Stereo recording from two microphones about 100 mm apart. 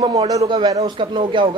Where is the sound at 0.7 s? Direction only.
75° right (ahead or behind); by 1.5 s 60° right (ahead or behind).